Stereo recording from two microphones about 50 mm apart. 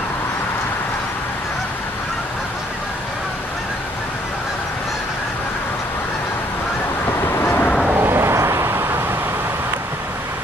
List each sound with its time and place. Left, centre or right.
7.1 s honk: left
8.0 s vehicle: right
8.3 s vehicle: right